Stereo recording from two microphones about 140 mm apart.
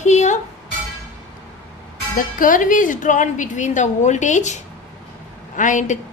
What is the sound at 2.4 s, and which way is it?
Speech, 70° left (ahead or behind).